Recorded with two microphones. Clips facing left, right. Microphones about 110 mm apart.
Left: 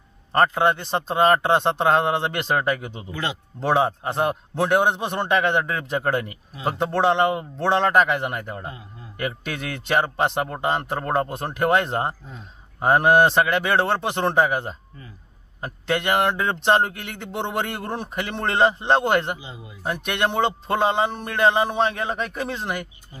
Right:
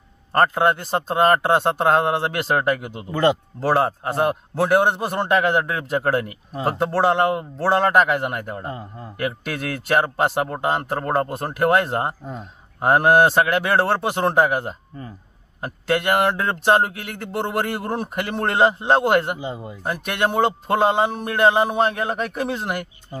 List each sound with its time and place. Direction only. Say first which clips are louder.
0.3 s speech: right 1 dB; 5° right (ahead or behind)
3.1 s a man's voice: right 11 dB; 50° right (ahead or behind)
3.5 s speech: right 1 dB; centre (ahead or behind)
8.6 s a man's voice: right 5 dB; 50° right (ahead or behind)
9.2 s speech: right 3 dB; centre (ahead or behind)
19.3 s a man's voice: right 9 dB; 50° right (ahead or behind)
19.8 s speech: right 1 dB; centre (ahead or behind)